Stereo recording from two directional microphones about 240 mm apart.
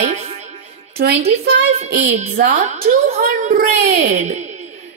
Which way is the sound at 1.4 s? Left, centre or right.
Right.